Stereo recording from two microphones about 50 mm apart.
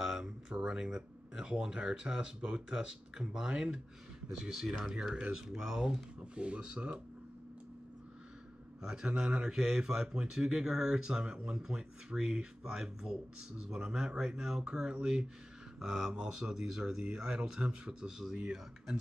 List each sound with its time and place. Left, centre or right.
0.0 s speech: centre
8.8 s speech: centre